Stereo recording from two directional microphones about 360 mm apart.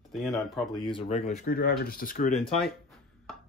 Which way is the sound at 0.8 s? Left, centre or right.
Centre.